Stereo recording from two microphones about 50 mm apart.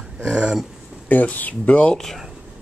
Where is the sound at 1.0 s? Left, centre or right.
Left.